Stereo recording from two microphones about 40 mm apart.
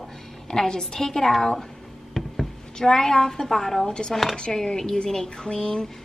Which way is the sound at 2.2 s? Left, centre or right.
Centre.